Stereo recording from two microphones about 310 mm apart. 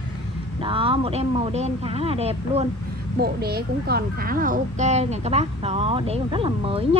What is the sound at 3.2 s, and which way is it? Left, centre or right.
Speech, right.